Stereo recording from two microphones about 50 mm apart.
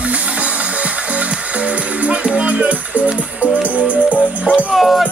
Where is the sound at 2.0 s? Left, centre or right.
Right.